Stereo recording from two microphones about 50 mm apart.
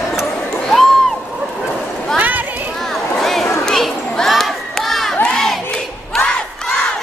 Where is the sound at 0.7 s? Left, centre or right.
Centre.